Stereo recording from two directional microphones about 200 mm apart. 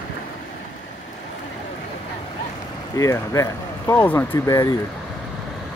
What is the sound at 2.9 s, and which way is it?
Speech, 15° left (ahead or behind).